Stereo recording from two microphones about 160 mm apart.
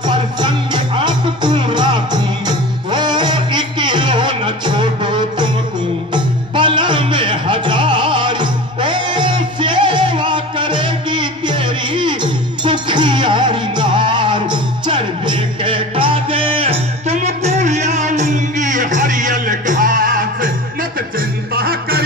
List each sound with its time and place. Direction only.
0.4 s music: 30° right (ahead or behind); by 20.5 s 60° right (ahead or behind)